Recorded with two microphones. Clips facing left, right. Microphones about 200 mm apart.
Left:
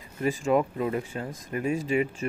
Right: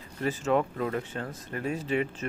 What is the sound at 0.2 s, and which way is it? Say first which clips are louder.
Speech: left 2 dB; 10° left (ahead or behind).